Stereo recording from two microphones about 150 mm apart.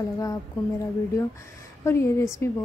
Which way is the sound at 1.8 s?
15° left (ahead or behind).